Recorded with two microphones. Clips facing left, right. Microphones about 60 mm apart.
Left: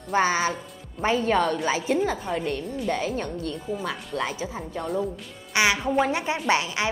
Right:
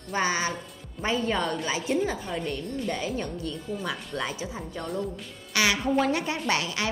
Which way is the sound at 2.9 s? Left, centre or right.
Left.